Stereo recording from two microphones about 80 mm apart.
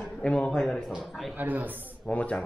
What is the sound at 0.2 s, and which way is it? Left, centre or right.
Speech, centre.